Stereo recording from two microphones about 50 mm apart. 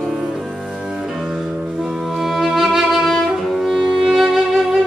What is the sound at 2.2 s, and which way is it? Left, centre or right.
Music, centre.